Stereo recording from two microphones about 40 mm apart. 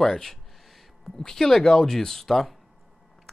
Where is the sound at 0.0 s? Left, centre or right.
Centre.